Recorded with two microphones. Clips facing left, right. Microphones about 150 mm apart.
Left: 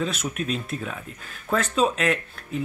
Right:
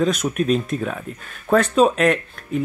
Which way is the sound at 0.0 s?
45° right (ahead or behind).